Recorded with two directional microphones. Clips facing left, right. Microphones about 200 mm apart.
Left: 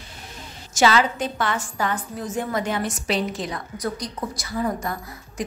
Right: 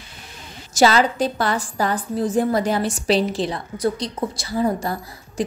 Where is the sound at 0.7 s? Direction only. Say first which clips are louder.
Right 3 dB; 35° right (ahead or behind).